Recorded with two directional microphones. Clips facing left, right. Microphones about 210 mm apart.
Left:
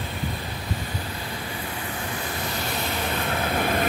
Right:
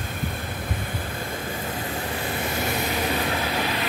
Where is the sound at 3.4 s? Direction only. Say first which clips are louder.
Left 2 dB; 50° left (ahead or behind).